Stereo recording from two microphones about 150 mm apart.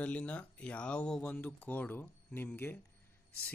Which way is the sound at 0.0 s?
10° left (ahead or behind).